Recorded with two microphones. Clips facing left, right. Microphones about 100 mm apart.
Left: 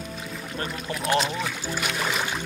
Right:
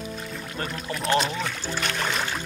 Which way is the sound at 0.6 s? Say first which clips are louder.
Even; 5° left (ahead or behind).